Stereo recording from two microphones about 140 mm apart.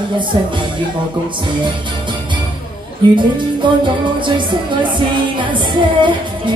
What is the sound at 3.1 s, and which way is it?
Music, 35° right (ahead or behind).